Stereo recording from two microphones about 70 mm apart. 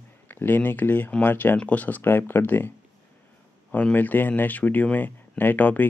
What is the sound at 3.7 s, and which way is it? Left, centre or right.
Speech, left.